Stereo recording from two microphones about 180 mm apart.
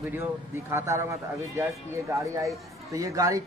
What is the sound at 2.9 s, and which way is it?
Speech, 20° right (ahead or behind).